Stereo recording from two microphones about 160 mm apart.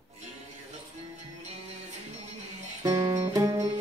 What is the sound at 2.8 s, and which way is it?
Music, 20° right (ahead or behind).